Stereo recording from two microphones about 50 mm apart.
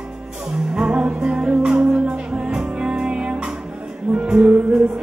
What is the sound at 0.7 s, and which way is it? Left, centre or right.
Music, right.